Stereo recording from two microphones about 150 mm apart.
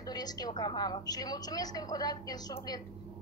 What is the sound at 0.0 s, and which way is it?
A woman's voice, 25° left (ahead or behind).